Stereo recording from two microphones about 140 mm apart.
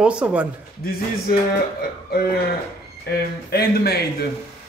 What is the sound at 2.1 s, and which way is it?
Speech, 90° left.